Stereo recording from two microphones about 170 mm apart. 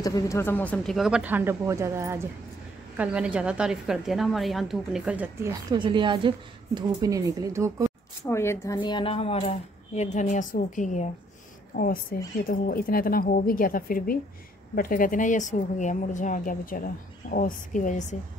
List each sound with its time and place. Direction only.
0.0 s a woman's voice: 20° left (ahead or behind); by 5.5 s 10° right (ahead or behind)
5.7 s a woman's voice: 30° right (ahead or behind)
8.3 s a woman's voice: 15° left (ahead or behind)
8.7 s speech: 25° left (ahead or behind); by 18.1 s 50° left (ahead or behind)